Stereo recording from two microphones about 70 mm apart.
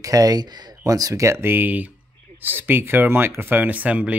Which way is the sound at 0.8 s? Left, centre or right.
Right.